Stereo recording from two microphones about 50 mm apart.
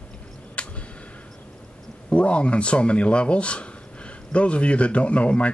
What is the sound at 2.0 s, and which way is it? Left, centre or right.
Speech, left.